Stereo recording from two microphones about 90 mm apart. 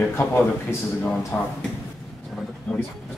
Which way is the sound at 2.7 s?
5° left (ahead or behind).